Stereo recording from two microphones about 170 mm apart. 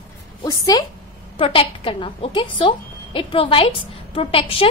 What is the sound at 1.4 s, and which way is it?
A woman's voice, 35° left (ahead or behind).